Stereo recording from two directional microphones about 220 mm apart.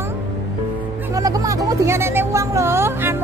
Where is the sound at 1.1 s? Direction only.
15° right (ahead or behind).